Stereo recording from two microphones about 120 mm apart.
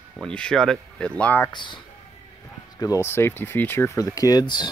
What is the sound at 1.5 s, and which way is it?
Speech, 40° left (ahead or behind).